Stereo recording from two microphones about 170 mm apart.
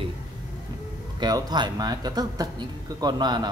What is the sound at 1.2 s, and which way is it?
Speech, 25° right (ahead or behind).